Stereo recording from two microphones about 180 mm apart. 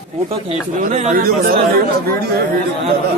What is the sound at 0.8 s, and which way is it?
Speech, 45° right (ahead or behind).